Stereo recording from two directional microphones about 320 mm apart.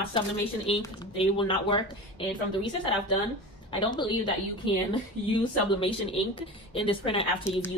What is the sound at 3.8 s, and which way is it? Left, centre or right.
A woman's voice, centre.